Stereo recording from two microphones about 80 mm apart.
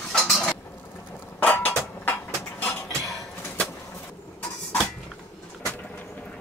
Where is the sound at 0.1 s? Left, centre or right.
Centre.